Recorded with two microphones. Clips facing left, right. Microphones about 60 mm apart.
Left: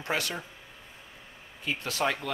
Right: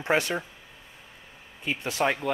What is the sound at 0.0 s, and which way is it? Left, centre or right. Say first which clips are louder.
Speech: right 6 dB; right.